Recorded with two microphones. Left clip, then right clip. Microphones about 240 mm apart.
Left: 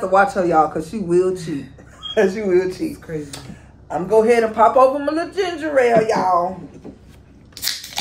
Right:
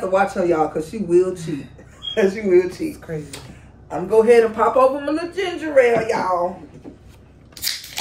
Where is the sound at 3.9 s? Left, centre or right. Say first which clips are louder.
Even; centre.